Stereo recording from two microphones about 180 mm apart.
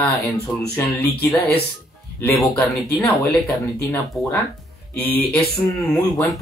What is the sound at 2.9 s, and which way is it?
Speech, 5° left (ahead or behind).